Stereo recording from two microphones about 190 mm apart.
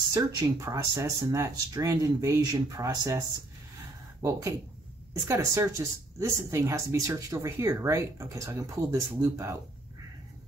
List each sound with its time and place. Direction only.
0.1 s speech: 20° right (ahead or behind)
4.2 s speech: 15° right (ahead or behind)